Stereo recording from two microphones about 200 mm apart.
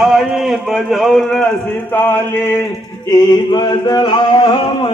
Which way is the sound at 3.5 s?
20° left (ahead or behind).